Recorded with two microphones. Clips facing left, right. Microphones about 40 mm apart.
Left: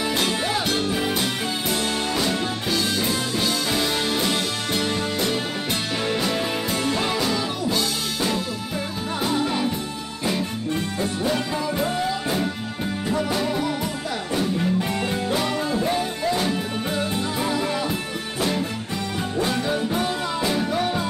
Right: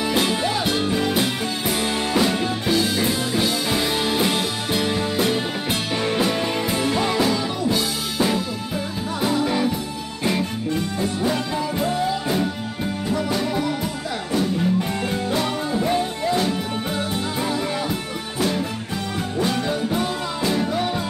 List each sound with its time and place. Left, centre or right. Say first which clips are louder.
0.1 s music: right 3 dB; centre
2.1 s music: right 3 dB; centre
11.2 s music: even; centre
15.7 s music: right 4 dB; centre
17.4 s music: even; centre
19.4 s music: right 1 dB; centre